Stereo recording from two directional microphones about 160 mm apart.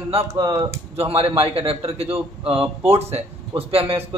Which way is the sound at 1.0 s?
40° right (ahead or behind).